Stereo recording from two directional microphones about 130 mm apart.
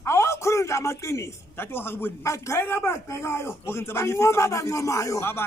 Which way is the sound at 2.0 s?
20° left (ahead or behind).